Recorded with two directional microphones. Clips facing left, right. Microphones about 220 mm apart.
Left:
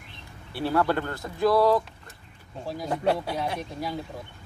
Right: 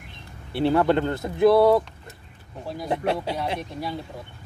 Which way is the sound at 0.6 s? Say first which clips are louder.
Right 5 dB; 25° right (ahead or behind).